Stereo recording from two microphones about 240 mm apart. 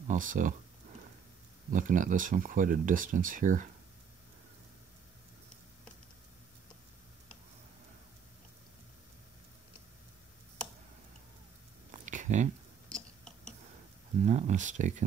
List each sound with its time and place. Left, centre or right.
0.1 s speech: right
1.7 s speech: right
11.9 s a sound: right
12.9 s tick-tock: centre
14.2 s speech: right